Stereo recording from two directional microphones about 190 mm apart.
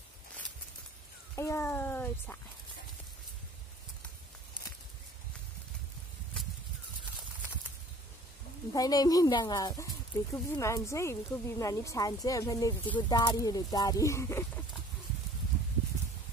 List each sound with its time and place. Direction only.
1.3 s speech: 15° left (ahead or behind)
8.7 s speech: 20° left (ahead or behind)